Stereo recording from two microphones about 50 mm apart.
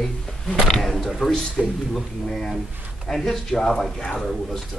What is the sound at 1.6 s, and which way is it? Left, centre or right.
Speech, centre.